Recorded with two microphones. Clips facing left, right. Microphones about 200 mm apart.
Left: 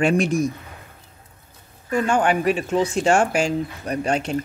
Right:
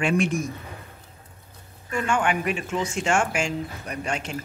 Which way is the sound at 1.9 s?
35° left (ahead or behind).